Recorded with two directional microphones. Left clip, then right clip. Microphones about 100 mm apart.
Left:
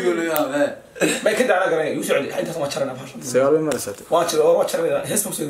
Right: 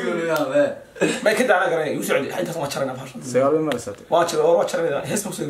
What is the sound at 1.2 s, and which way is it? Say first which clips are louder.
Speech: right 1 dB; 15° right (ahead or behind).